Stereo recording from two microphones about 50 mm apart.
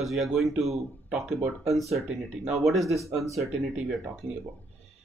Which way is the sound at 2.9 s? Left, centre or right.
Right.